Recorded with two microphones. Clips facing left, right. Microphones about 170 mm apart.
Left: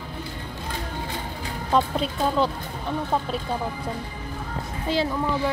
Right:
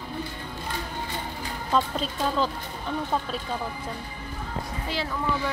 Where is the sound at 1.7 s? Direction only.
15° left (ahead or behind).